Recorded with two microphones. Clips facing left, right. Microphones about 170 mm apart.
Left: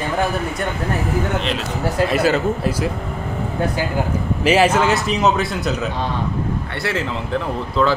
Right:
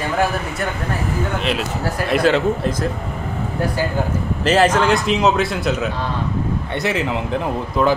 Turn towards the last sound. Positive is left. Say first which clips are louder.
# right 1 dB
turn(degrees=-15)  # may be behind; listen again after turning